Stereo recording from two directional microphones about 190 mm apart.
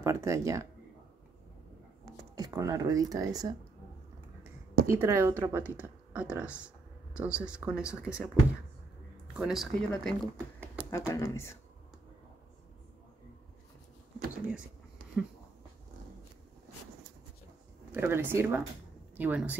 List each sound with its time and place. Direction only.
0.0 s speech: 15° right (ahead or behind)
2.3 s speech: 20° right (ahead or behind)
4.8 s speech: 15° right (ahead or behind)
9.4 s speech: centre (ahead or behind)
10.2 s speech: 15° right (ahead or behind)
10.9 s speech: 15° left (ahead or behind)
14.5 s a sound: 5° right (ahead or behind)
17.9 s speech: 10° right (ahead or behind)